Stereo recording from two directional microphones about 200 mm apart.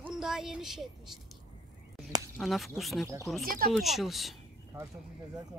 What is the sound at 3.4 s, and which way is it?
Speech, 45° right (ahead or behind).